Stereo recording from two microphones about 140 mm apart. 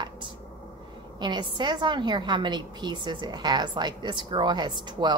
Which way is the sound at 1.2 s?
30° right (ahead or behind).